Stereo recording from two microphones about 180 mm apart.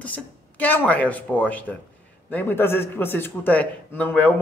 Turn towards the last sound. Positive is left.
turn(degrees=10)  # may be behind; listen again after turning